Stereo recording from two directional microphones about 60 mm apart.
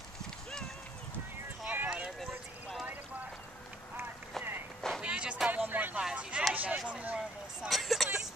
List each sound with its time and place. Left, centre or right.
1.7 s clip-clop: right
5.0 s music: centre
5.5 s music: right
5.9 s a sound: centre
6.5 s a sound: right
7.2 s vehicle: centre